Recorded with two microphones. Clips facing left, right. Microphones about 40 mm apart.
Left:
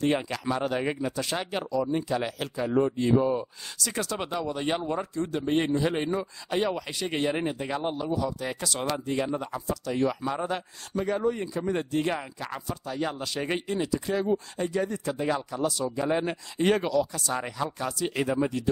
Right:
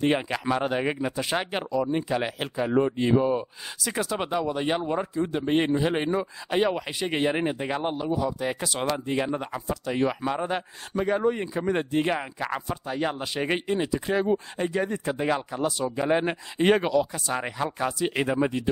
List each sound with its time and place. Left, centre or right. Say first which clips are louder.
0.0 s speech: right 2 dB; right